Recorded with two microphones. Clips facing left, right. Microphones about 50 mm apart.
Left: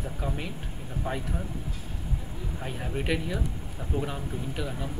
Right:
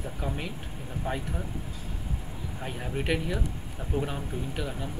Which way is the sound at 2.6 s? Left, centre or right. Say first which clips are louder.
Even; centre.